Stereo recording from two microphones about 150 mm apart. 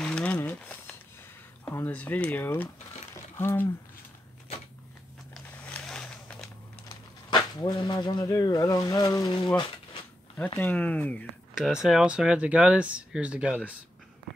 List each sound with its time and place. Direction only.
0.0 s a sound: 10° left (ahead or behind)
1.6 s speech: 15° left (ahead or behind)
5.3 s a sound: 5° left (ahead or behind)
7.2 s speech: 30° left (ahead or behind)
10.5 s speech: 10° left (ahead or behind)
11.5 s speech: 5° right (ahead or behind)